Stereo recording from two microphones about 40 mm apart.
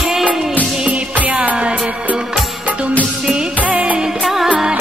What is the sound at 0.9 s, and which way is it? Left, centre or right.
Music, right.